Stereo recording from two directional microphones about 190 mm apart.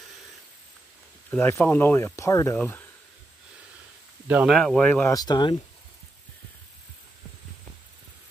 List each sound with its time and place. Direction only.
1.3 s speech: 10° left (ahead or behind)
4.5 s speech: 5° left (ahead or behind)
5.1 s speech: 20° left (ahead or behind)